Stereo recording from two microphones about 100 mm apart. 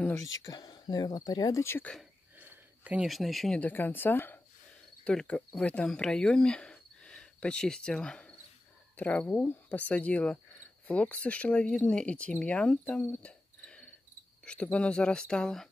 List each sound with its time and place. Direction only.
0.1 s speech: 35° left (ahead or behind)
2.3 s a sound: 15° right (ahead or behind)
3.1 s speech: centre (ahead or behind)
3.6 s speech: 20° left (ahead or behind)